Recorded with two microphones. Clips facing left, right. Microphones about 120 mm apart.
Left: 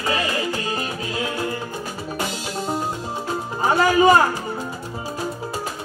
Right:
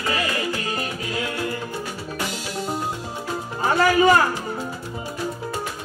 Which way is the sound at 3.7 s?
25° left (ahead or behind).